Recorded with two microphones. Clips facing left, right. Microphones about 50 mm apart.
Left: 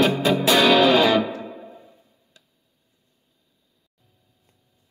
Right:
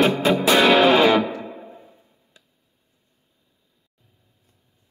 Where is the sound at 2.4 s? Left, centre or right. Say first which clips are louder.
Right 1 dB; right.